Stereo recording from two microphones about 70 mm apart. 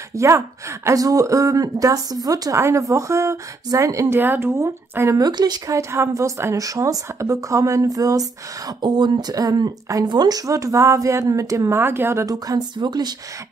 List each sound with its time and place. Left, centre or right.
0.1 s speech: right
2.5 s a woman's voice: right
4.1 s a woman's voice: right
5.1 s speech: right
5.7 s a woman's voice: right
11.8 s a woman's voice: right
12.3 s speech: right